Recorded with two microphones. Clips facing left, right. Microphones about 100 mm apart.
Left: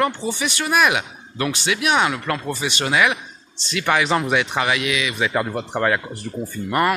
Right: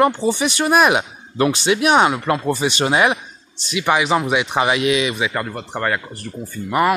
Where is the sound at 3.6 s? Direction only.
15° right (ahead or behind); by 5.1 s 30° right (ahead or behind).